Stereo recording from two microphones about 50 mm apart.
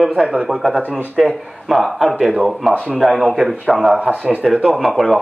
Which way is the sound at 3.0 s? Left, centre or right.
Centre.